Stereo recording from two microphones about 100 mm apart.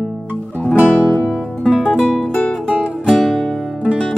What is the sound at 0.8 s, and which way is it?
Music, centre (ahead or behind).